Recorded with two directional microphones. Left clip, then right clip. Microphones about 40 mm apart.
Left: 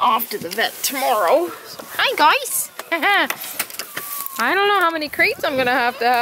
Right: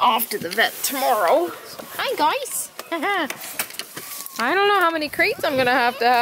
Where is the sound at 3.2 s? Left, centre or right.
Left.